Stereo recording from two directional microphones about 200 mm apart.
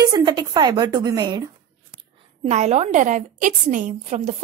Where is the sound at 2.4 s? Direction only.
35° right (ahead or behind).